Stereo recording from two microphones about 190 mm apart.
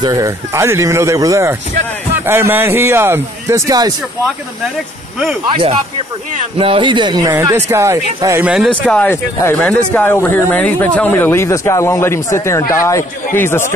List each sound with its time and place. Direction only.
0.0 s speech: 15° right (ahead or behind)
5.5 s speech: 25° right (ahead or behind); by 8.6 s 10° right (ahead or behind)
8.8 s speech: 5° left (ahead or behind)